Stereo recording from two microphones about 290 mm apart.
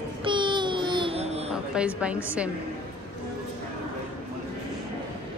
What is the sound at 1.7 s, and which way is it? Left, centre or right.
Speech, centre.